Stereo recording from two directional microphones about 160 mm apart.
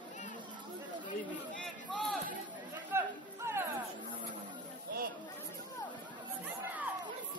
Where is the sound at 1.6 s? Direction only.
5° left (ahead or behind).